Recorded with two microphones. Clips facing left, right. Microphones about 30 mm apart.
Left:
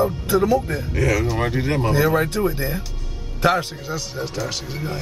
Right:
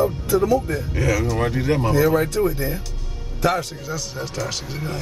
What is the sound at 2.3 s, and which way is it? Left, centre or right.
Speech, left.